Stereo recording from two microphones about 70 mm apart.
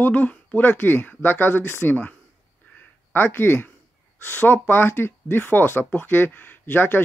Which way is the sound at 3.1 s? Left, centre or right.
Left.